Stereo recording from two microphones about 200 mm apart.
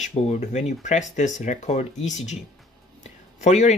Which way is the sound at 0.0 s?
35° left (ahead or behind).